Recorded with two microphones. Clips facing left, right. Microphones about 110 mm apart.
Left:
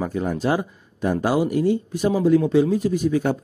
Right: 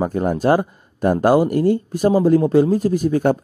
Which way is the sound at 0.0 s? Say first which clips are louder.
Right 5 dB; 45° right (ahead or behind).